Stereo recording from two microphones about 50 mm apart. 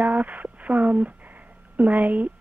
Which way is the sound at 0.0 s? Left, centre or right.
Right.